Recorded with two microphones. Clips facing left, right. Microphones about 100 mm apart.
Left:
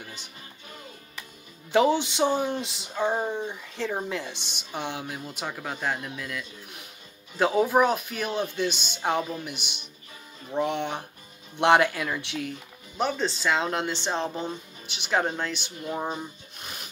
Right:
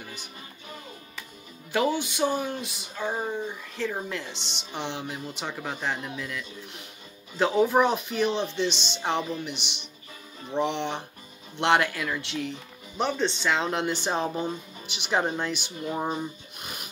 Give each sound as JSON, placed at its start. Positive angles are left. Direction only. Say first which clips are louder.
{"t": 1.7, "sound": "speech", "louder": "left 4 dB", "side_deg": 20}
{"t": 8.7, "sound": "speech", "louder": "right 3 dB", "side_deg": -25}
{"t": 9.0, "sound": "speech", "louder": "left 1 dB", "side_deg": 10}
{"t": 12.9, "sound": "speech", "louder": "even", "side_deg": 5}
{"t": 13.7, "sound": "speech", "louder": "right 1 dB", "side_deg": -5}